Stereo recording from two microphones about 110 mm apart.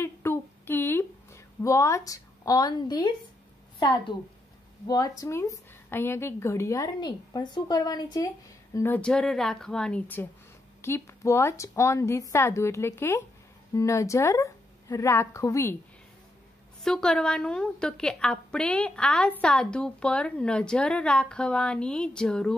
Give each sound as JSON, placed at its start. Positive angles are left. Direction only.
{"t": 0.0, "sound": "a sound", "side_deg": 25}
{"t": 4.8, "sound": "a woman's voice", "side_deg": 35}
{"t": 8.7, "sound": "a woman's voice", "side_deg": 20}
{"t": 10.8, "sound": "a woman's voice", "side_deg": 25}
{"t": 16.8, "sound": "a woman's voice", "side_deg": 5}